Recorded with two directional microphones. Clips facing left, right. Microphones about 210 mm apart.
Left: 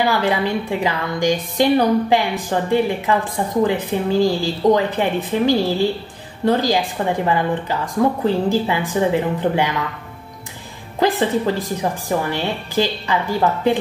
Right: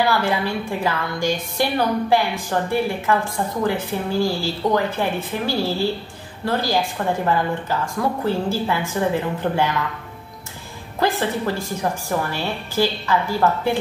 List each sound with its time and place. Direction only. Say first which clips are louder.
0.0 s a woman's voice: left 2 dB; 15° left (ahead or behind)
11.0 s a woman's voice: left 4 dB; 15° left (ahead or behind)